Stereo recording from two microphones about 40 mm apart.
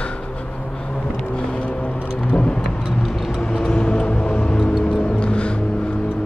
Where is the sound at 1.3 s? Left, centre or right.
Left.